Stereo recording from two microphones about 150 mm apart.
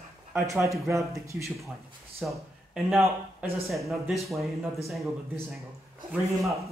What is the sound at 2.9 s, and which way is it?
Speech, 15° right (ahead or behind).